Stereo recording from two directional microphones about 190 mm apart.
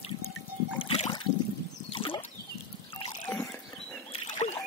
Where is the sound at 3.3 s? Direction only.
10° left (ahead or behind).